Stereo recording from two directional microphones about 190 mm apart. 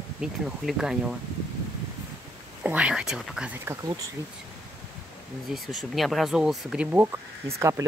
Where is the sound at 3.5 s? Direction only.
15° right (ahead or behind).